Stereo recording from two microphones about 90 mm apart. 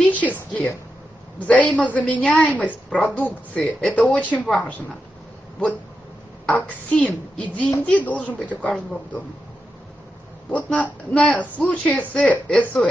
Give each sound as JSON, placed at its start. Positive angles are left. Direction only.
{"t": 0.0, "sound": "a sound", "side_deg": 15}
{"t": 1.5, "sound": "a woman's voice", "side_deg": 15}
{"t": 6.4, "sound": "a woman's voice", "side_deg": 10}
{"t": 10.5, "sound": "a woman's voice", "side_deg": 10}